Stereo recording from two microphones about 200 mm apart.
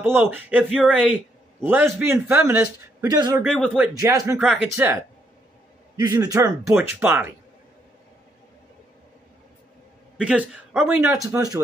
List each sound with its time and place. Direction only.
0.0 s a man's voice: 10° right (ahead or behind)
3.4 s speech: centre (ahead or behind)
4.0 s a man's voice: 15° right (ahead or behind)
5.9 s a man's voice: 15° right (ahead or behind)
10.1 s a man's voice: 5° right (ahead or behind)